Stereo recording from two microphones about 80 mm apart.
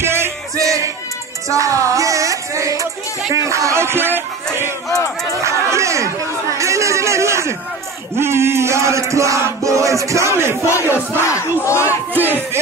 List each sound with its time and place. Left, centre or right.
0.0 s music: right
5.4 s chatter: right
8.2 s chant: right
10.6 s battle cry: left
12.1 s battle cry: right